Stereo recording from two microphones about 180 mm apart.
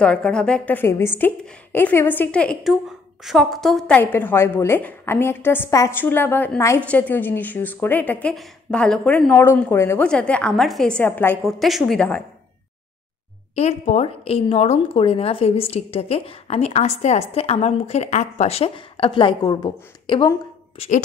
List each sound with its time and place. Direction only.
0.0 s a woman's voice: 5° left (ahead or behind)
13.6 s a woman's voice: 40° left (ahead or behind)